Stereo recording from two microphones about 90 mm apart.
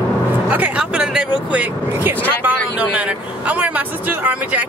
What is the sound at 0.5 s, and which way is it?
Speech, 15° right (ahead or behind).